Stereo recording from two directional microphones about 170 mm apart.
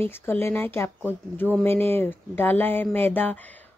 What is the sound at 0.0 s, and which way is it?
Speech, 15° left (ahead or behind).